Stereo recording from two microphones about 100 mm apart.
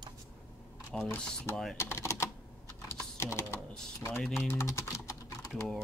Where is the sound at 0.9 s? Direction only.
10° left (ahead or behind).